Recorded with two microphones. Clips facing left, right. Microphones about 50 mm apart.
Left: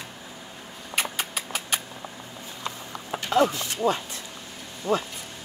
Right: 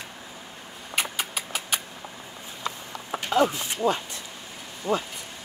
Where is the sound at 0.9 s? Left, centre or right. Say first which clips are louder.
Even; centre.